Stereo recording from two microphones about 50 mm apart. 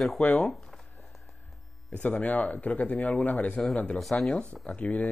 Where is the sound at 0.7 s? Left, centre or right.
Centre.